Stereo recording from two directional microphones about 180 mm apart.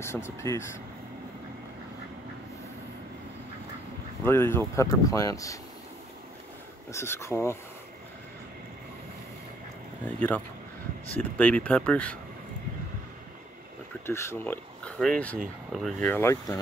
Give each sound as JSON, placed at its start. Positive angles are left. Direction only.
{"t": 0.0, "sound": "speech", "side_deg": 15}
{"t": 4.2, "sound": "speech", "side_deg": 15}
{"t": 6.9, "sound": "speech", "side_deg": 15}
{"t": 10.0, "sound": "speech", "side_deg": 10}
{"t": 14.0, "sound": "speech", "side_deg": 15}